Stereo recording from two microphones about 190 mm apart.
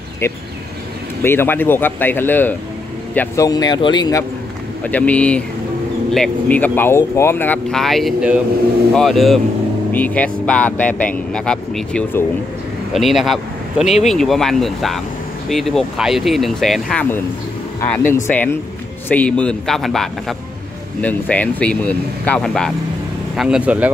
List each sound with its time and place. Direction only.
1.2 s speech: 10° left (ahead or behind)
4.8 s speech: 5° left (ahead or behind)